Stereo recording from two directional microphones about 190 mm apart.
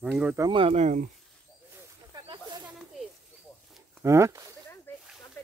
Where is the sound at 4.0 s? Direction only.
15° right (ahead or behind).